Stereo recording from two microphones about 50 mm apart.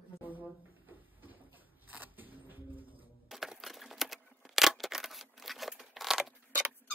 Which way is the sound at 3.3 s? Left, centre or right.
Centre.